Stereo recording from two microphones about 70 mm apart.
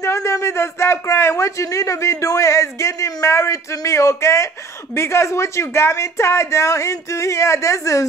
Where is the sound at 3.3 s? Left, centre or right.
Left.